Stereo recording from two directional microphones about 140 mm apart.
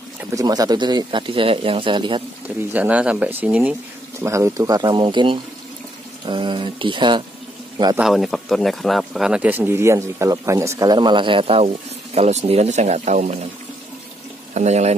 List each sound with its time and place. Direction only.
0.3 s speech: 25° right (ahead or behind)
2.7 s a man's voice: 10° right (ahead or behind); by 8.0 s 30° right (ahead or behind)
8.0 s speech: centre (ahead or behind); by 13.5 s 55° right (ahead or behind)
14.5 s speech: 55° right (ahead or behind)